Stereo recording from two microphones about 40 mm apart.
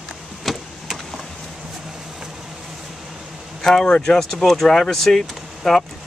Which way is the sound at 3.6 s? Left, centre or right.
Centre.